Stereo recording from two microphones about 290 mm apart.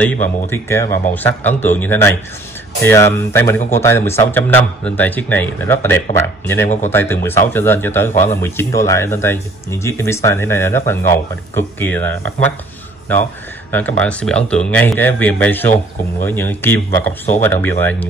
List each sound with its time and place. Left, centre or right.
0.0 s speech: centre
8.1 s speech: left
8.4 s speech: centre
12.1 s speech: right
13.7 s speech: centre